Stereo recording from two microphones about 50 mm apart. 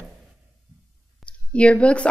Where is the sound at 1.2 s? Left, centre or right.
Left.